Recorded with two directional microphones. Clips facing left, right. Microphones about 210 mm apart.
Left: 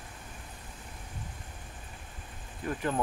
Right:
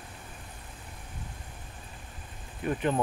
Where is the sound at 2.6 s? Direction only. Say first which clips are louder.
Right 4 dB; 20° right (ahead or behind).